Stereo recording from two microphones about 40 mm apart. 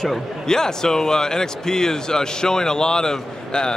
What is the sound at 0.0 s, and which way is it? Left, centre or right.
A man's voice, centre.